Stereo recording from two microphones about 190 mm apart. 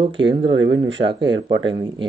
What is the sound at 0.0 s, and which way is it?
Speech, 25° right (ahead or behind).